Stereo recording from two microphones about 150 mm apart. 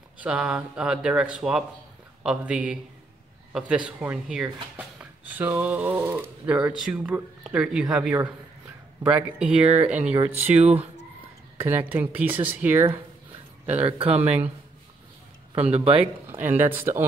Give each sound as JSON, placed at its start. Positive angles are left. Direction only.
{"t": 0.2, "sound": "speech", "side_deg": -5}
{"t": 10.5, "sound": "speech", "side_deg": -45}
{"t": 11.6, "sound": "speech", "side_deg": -15}
{"t": 13.7, "sound": "speech", "side_deg": -40}
{"t": 14.2, "sound": "speech", "side_deg": -10}
{"t": 15.7, "sound": "speech", "side_deg": -40}
{"t": 16.3, "sound": "speech", "side_deg": -15}